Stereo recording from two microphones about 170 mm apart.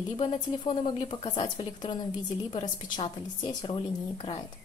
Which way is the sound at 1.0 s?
30° left (ahead or behind).